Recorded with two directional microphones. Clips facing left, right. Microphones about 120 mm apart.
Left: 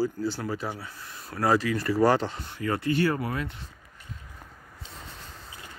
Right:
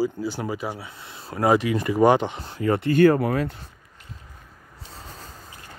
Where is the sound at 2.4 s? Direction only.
30° right (ahead or behind).